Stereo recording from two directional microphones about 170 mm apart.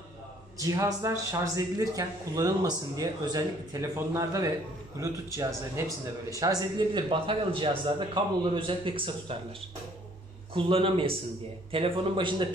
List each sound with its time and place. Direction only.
0.6 s a man's voice: 20° right (ahead or behind)
10.5 s a man's voice: 30° right (ahead or behind)